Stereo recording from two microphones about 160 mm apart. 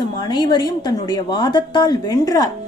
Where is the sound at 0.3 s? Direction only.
25° left (ahead or behind).